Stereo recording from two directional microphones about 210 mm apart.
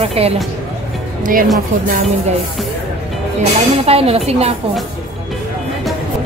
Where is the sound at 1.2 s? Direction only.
40° right (ahead or behind).